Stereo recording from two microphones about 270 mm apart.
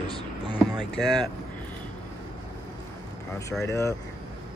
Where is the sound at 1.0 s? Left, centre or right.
Centre.